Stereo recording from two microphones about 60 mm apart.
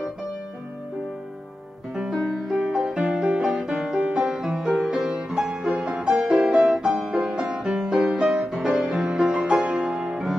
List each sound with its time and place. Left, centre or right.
2.0 s music: centre